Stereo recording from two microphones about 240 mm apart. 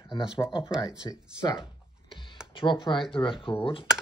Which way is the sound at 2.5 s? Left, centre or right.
Centre.